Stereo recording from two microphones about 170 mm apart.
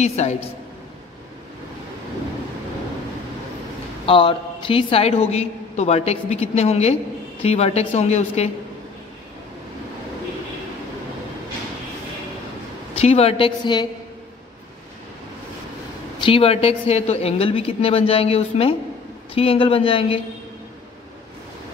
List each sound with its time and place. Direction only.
0.0 s a woman's voice: 40° left (ahead or behind)
4.0 s a woman's voice: 30° left (ahead or behind)
13.0 s a woman's voice: 35° left (ahead or behind)
16.2 s a woman's voice: 30° left (ahead or behind)